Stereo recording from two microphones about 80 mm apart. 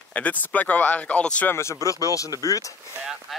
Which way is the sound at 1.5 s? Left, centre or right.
Left.